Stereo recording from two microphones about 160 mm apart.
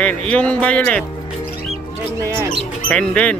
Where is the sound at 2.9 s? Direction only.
5° left (ahead or behind).